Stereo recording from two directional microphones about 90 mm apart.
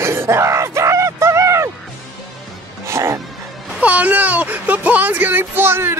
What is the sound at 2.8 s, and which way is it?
Music, 30° right (ahead or behind).